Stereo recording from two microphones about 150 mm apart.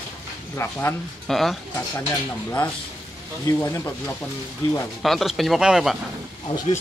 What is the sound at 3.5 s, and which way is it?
Speech, 15° left (ahead or behind).